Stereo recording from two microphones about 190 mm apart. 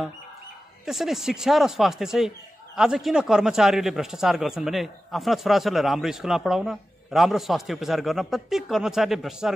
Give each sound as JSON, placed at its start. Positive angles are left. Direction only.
{"t": 0.8, "sound": "speech", "side_deg": 0}